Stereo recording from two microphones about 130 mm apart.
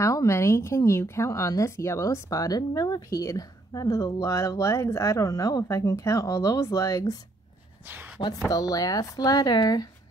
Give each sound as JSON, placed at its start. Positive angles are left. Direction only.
{"t": 0.0, "sound": "speech", "side_deg": 25}
{"t": 7.8, "sound": "speech", "side_deg": -15}
{"t": 8.5, "sound": "speech", "side_deg": 30}